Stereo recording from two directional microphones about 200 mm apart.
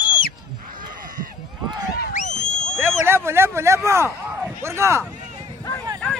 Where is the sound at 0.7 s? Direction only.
45° right (ahead or behind).